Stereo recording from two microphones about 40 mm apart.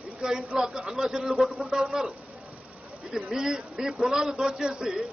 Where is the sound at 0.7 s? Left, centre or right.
Centre.